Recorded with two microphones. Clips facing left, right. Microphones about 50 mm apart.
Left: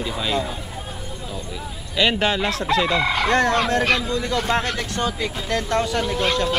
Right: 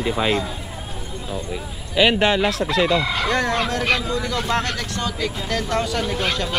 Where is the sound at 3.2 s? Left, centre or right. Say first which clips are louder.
Left 2 dB; left.